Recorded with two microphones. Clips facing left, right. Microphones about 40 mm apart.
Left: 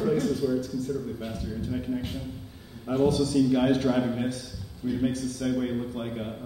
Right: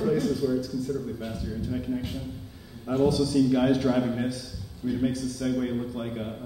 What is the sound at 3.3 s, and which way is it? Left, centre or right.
A man's voice, centre.